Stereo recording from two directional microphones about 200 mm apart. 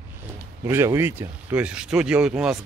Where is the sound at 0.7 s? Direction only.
10° right (ahead or behind).